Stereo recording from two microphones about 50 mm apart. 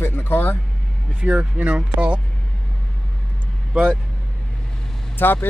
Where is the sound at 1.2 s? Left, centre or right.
Right.